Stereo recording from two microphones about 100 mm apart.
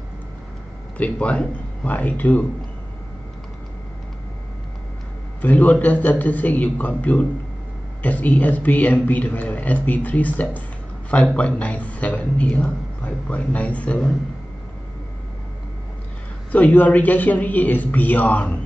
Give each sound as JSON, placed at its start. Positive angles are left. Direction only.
{"t": 0.9, "sound": "a man's voice", "side_deg": 15}
{"t": 5.4, "sound": "a man's voice", "side_deg": 15}
{"t": 16.5, "sound": "a man's voice", "side_deg": 15}